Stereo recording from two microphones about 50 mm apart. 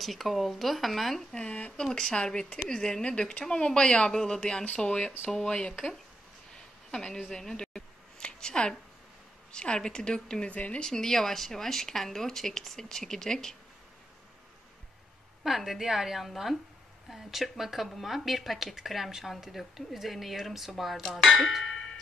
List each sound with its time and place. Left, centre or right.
0.0 s a woman's voice: centre
1.3 s speech: left
1.9 s speech: centre
4.4 s speech: centre
6.5 s a sound: centre
9.5 s speech: centre
10.5 s speech: left
10.8 s speech: centre
15.4 s a woman's voice: centre
21.5 s a sound: centre